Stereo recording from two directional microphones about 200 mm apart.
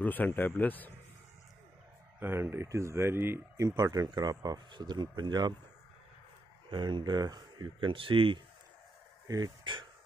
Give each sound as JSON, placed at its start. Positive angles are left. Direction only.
{"t": 0.0, "sound": "speech", "side_deg": 10}
{"t": 2.1, "sound": "speech", "side_deg": -10}
{"t": 6.7, "sound": "speech", "side_deg": -25}